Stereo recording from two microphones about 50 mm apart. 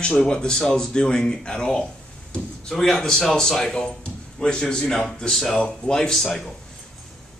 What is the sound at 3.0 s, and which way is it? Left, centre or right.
Speech, centre.